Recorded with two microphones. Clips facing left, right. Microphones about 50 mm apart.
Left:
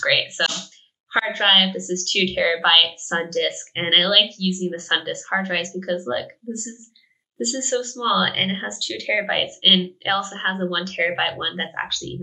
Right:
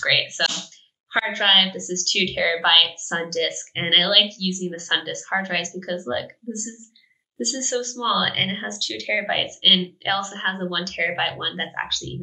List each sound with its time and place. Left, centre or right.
0.0 s a woman's voice: centre